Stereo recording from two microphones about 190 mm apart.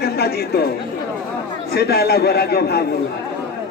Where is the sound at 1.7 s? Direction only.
55° left (ahead or behind).